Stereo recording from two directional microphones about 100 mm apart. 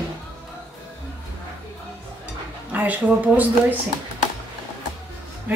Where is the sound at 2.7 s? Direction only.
15° right (ahead or behind).